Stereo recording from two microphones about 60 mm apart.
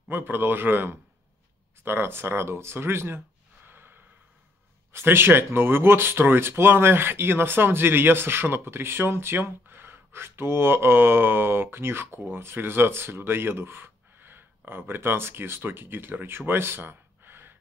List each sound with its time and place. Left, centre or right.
0.1 s speech: right
3.6 s gasp: right
4.9 s speech: right